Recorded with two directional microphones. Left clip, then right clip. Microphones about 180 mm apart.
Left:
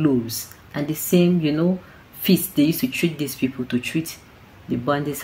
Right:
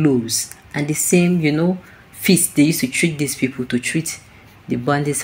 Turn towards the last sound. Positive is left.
turn(degrees=-15)  # may be behind; listen again after turning